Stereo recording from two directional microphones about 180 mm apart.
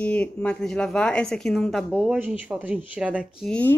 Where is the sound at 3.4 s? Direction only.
5° left (ahead or behind).